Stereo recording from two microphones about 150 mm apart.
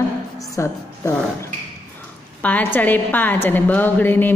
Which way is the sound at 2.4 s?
10° left (ahead or behind).